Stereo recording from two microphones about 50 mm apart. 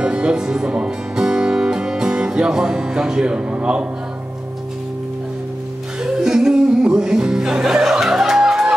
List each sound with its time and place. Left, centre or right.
0.0 s music: centre
6.1 s music: centre